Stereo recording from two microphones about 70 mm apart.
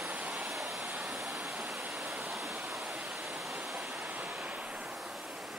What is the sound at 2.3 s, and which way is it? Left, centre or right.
Waterfall, centre.